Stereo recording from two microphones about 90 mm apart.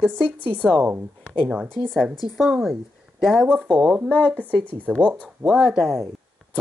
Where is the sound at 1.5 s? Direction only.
10° right (ahead or behind).